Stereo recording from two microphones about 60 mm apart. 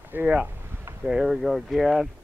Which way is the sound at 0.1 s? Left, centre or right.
Right.